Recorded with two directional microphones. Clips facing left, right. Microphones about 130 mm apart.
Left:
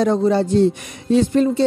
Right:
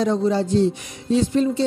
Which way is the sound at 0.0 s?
55° left (ahead or behind).